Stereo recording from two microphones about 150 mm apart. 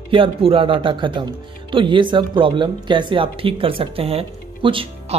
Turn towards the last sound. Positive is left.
turn(degrees=-35)  # may be behind; listen again after turning